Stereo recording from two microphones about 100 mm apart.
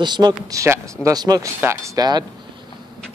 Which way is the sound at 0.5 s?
30° right (ahead or behind).